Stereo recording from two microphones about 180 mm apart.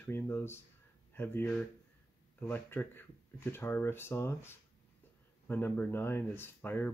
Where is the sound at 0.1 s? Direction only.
15° left (ahead or behind).